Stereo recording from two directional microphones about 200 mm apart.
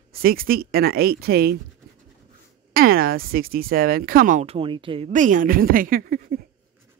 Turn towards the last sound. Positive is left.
turn(degrees=-45)  # may be behind; listen again after turning